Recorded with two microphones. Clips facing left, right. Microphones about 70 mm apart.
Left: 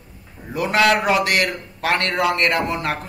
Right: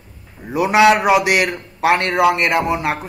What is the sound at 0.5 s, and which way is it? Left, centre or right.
A man's voice, centre.